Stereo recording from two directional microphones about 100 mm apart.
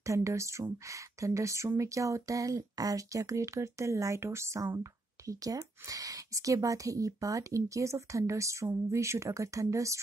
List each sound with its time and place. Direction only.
0.0 s speech: 30° right (ahead or behind)